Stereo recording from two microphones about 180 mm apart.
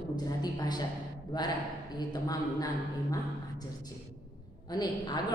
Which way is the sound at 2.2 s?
20° left (ahead or behind).